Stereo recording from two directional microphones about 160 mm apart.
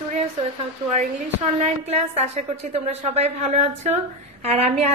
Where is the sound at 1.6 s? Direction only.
45° right (ahead or behind).